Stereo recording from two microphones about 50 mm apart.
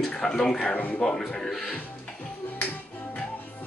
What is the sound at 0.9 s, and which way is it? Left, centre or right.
Speech, centre.